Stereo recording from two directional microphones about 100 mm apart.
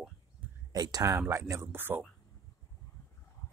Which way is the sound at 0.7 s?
40° right (ahead or behind).